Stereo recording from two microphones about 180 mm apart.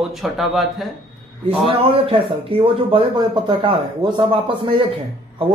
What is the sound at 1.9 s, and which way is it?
Speech, 30° right (ahead or behind).